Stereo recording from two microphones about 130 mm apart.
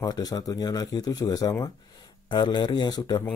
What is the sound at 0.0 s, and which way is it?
Speech, 30° left (ahead or behind).